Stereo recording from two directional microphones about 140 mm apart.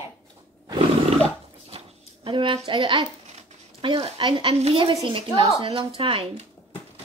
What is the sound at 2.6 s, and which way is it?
A woman's voice, 35° right (ahead or behind).